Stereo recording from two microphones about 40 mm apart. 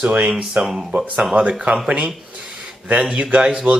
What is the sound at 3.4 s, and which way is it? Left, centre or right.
Speech, centre.